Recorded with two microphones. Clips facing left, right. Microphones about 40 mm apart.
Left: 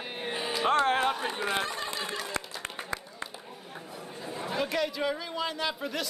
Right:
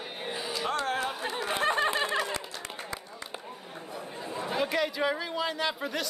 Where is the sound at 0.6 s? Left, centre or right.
Left.